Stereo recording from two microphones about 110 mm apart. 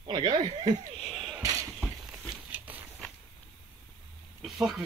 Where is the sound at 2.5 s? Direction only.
15° right (ahead or behind).